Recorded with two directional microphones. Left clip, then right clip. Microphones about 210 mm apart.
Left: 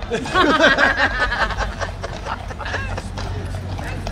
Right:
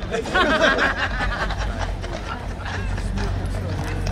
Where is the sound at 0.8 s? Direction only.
50° left (ahead or behind).